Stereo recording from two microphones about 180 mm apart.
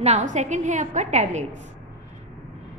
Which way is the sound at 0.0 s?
40° right (ahead or behind).